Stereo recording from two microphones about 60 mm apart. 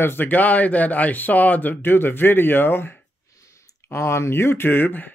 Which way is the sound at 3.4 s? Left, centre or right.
Left.